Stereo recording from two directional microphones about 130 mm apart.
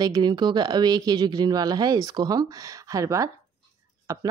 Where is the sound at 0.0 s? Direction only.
30° right (ahead or behind).